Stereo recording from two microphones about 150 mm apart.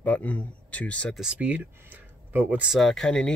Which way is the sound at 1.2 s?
5° right (ahead or behind).